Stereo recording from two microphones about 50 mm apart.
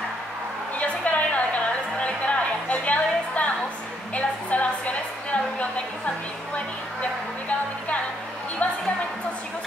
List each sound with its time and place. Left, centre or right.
0.7 s music: left
4.1 s a sound: left
6.5 s music: left